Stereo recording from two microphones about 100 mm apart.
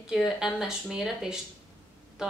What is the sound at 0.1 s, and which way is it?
Speech, 5° right (ahead or behind).